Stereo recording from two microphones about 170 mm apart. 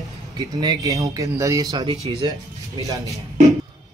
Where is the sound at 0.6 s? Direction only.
20° right (ahead or behind).